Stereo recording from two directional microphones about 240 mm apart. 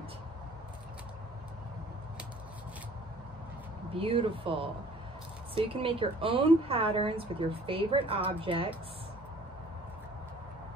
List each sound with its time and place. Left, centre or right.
3.9 s a woman's voice: right